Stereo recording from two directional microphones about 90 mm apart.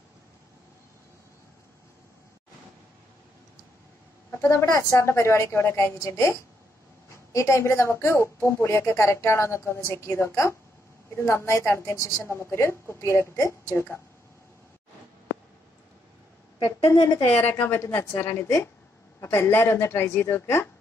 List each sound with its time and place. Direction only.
4.4 s speech: 30° left (ahead or behind)
7.3 s speech: 35° left (ahead or behind)
17.2 s a woman's voice: 25° left (ahead or behind)